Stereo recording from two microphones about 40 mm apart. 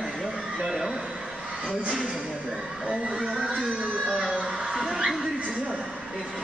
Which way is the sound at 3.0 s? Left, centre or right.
Right.